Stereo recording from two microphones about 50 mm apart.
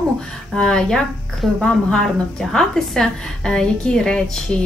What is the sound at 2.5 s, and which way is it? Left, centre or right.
Speech, centre.